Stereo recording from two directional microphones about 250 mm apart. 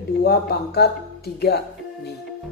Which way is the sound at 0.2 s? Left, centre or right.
Left.